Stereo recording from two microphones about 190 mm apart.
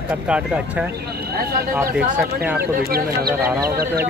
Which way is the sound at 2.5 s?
55° right (ahead or behind).